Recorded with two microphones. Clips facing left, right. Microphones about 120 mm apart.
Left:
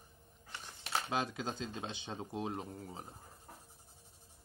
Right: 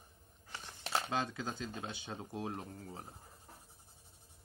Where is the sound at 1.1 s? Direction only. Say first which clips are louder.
Left 1 dB; 15° left (ahead or behind).